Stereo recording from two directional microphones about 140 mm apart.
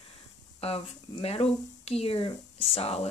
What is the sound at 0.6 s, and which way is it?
Speech, 45° left (ahead or behind).